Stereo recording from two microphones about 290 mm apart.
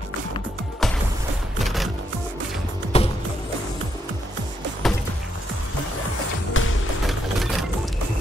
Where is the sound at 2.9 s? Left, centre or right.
Left.